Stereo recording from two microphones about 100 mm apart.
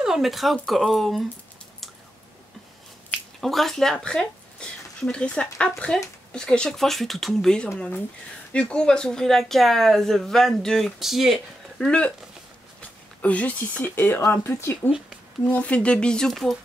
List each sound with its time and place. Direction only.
0.0 s speech: 5° right (ahead or behind)
3.1 s speech: centre (ahead or behind)
11.8 s speech: 10° left (ahead or behind)
13.2 s speech: 15° left (ahead or behind)
15.4 s speech: 10° left (ahead or behind)